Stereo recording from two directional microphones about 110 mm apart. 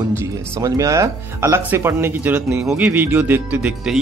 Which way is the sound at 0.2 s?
30° right (ahead or behind).